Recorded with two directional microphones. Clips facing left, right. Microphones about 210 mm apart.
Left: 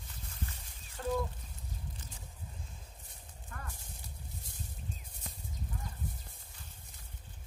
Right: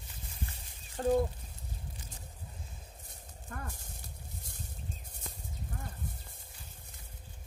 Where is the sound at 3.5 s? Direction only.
45° right (ahead or behind).